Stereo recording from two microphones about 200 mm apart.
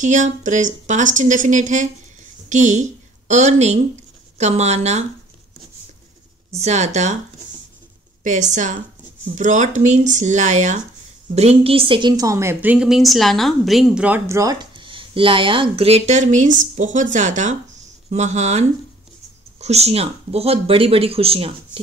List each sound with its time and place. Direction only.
0.0 s speech: 40° right (ahead or behind)
6.5 s speech: 35° right (ahead or behind)
8.2 s a woman's voice: 40° right (ahead or behind)